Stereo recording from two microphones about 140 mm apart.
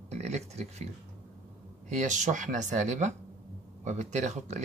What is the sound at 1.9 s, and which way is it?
Speech, 60° right (ahead or behind).